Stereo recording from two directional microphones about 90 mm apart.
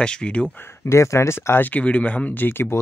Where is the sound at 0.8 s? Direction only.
30° left (ahead or behind).